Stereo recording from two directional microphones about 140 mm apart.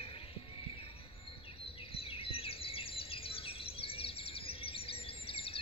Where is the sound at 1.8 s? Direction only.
40° left (ahead or behind).